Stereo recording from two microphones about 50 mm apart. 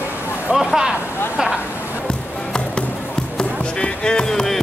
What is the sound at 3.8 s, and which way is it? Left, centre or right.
Music, centre.